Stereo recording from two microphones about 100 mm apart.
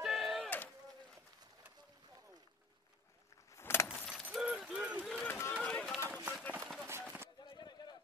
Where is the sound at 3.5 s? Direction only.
25° left (ahead or behind).